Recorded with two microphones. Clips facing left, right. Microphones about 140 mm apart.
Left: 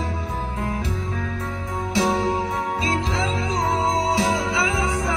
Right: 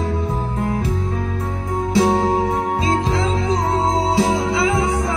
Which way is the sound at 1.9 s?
60° right (ahead or behind).